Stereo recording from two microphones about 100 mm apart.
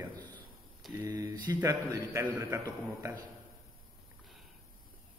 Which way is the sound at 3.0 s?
30° right (ahead or behind).